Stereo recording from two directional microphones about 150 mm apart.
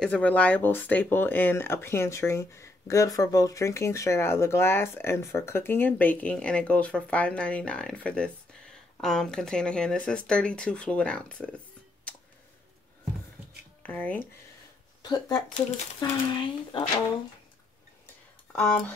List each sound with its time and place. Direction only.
0.0 s speech: 10° left (ahead or behind)
13.8 s speech: 10° left (ahead or behind)
15.0 s speech: 30° left (ahead or behind)
18.5 s speech: 10° left (ahead or behind)